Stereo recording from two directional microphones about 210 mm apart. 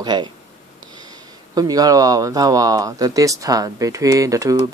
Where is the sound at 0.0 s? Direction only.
20° right (ahead or behind).